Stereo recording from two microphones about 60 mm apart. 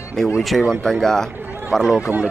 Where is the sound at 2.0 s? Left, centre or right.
Right.